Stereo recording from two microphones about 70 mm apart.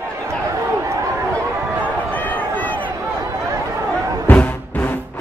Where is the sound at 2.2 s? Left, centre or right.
Left.